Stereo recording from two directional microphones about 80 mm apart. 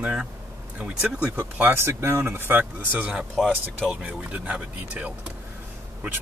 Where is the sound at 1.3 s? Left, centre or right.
Right.